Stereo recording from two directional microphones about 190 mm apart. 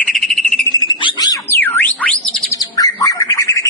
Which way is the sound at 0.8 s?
25° left (ahead or behind).